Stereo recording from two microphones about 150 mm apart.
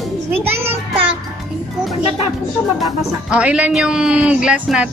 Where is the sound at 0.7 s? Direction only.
35° right (ahead or behind).